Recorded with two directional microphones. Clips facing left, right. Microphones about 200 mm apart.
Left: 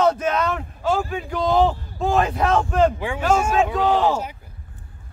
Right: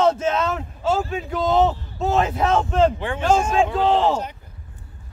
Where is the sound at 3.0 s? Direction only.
10° left (ahead or behind).